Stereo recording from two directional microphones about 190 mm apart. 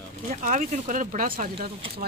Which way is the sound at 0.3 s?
40° right (ahead or behind).